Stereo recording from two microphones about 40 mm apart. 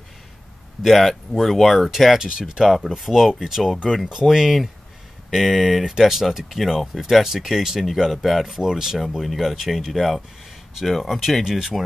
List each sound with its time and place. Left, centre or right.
0.8 s speech: centre
2.1 s speech: centre
2.6 s speech: centre
8.5 s speech: centre
9.1 s speech: centre